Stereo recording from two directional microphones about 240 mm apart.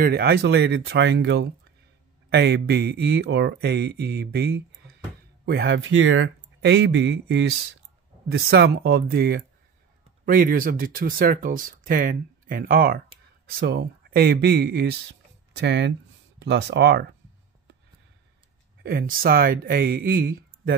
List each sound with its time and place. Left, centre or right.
0.0 s speech: right
18.8 s speech: right